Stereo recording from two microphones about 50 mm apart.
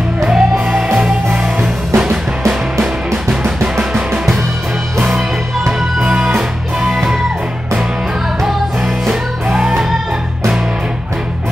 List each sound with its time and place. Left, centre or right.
0.2 s music: centre
6.0 s music: centre
8.4 s music: centre